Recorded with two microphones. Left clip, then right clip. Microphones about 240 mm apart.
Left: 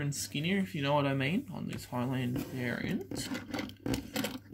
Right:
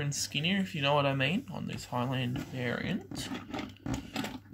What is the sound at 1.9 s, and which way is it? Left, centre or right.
Speech, right.